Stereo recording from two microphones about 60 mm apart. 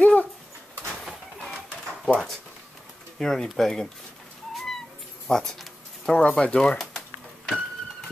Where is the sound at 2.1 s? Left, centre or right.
Centre.